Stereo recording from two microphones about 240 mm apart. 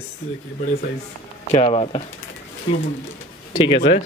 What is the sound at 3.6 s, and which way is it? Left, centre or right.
Speech, left.